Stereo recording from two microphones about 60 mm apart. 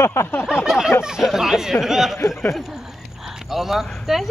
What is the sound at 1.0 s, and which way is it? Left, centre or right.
A man's voice, centre.